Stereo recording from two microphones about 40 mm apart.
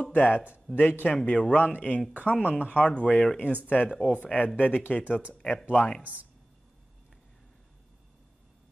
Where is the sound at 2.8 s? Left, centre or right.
Left.